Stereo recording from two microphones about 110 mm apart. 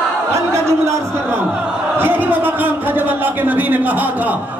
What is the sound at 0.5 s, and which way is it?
A man's voice, 25° right (ahead or behind).